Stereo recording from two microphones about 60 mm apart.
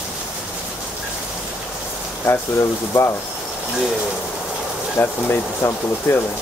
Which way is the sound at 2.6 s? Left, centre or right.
Left.